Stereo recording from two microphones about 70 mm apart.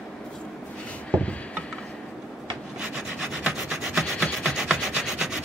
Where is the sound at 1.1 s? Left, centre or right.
Centre.